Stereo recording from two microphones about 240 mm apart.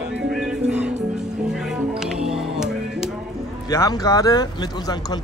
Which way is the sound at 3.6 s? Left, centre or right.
Centre.